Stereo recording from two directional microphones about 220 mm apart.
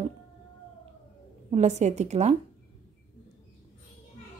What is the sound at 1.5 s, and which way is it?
Speech, 30° right (ahead or behind).